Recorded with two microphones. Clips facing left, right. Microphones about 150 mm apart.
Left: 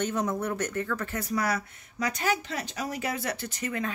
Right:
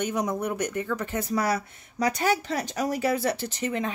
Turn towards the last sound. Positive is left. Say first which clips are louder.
# right 3 dB
turn(degrees=-25)  # may be behind; listen again after turning